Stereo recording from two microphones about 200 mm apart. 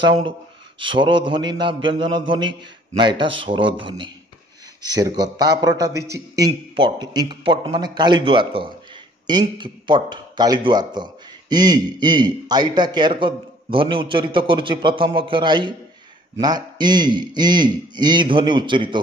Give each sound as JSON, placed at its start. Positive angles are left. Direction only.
{"t": 0.0, "sound": "a man's voice", "side_deg": -25}